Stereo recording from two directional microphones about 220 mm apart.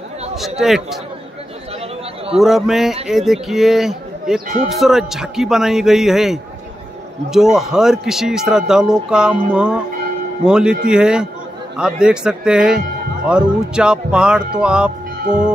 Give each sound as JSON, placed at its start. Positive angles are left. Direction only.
{"t": 0.4, "sound": "a man's voice", "side_deg": 0}
{"t": 2.3, "sound": "a man's voice", "side_deg": 0}